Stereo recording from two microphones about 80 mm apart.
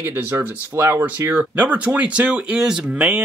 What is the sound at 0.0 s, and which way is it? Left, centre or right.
Speech, right.